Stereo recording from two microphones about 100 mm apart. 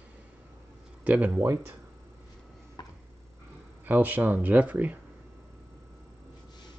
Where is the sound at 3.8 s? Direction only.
20° right (ahead or behind).